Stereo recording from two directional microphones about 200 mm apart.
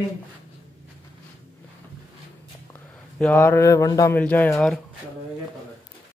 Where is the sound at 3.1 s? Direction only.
10° left (ahead or behind).